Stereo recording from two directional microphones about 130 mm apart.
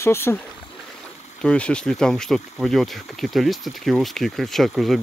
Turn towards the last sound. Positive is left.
turn(degrees=0)  # may be behind; listen again after turning